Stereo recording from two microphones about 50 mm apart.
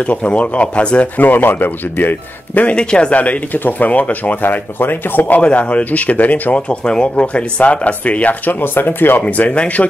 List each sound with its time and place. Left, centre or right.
0.0 s speech: left
1.1 s speech: left
2.8 s speech: centre; by 5.4 s left
5.4 s speech: left
6.5 s speech: left
9.2 s speech: left